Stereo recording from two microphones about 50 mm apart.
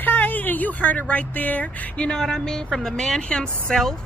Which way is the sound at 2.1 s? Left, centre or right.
Centre.